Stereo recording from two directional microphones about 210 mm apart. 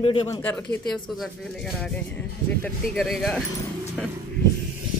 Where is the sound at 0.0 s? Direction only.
25° left (ahead or behind).